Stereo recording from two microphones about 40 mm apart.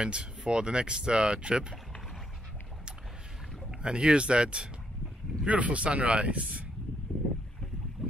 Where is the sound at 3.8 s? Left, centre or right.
Right.